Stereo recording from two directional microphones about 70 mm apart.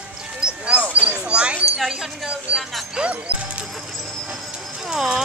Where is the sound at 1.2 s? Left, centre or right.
Centre.